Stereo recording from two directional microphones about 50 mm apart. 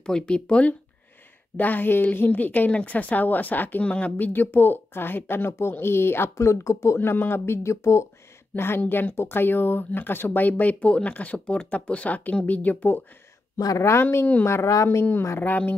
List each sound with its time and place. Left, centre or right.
0.0 s speech: centre
1.6 s speech: left
3.9 s speech: left
4.3 s speech: left
6.3 s speech: left
7.0 s speech: left
8.5 s speech: left
13.7 s speech: left
14.4 s speech: left
15.4 s speech: left